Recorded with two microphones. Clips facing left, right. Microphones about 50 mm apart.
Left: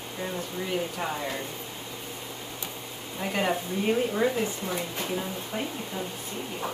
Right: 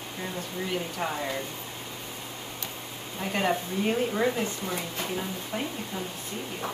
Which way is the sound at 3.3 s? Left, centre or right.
Centre.